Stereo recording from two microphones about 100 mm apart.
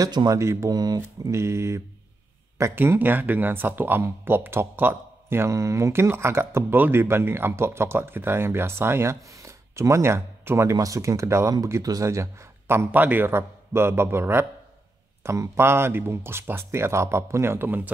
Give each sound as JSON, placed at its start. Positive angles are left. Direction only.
{"t": 0.0, "sound": "speech", "side_deg": -40}
{"t": 0.4, "sound": "speech", "side_deg": -30}
{"t": 1.3, "sound": "speech", "side_deg": -30}